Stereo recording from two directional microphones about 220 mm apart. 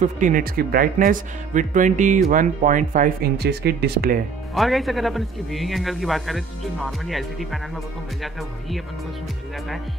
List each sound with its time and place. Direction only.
0.0 s speech: 35° right (ahead or behind)
4.6 s a man's voice: centre (ahead or behind)